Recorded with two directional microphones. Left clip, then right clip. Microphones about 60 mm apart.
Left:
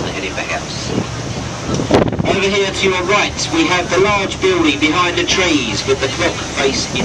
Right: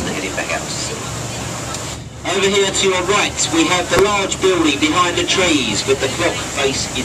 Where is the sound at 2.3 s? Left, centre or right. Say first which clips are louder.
Left 1 dB; centre.